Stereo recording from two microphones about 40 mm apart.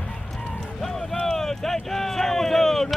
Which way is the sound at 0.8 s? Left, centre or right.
Centre.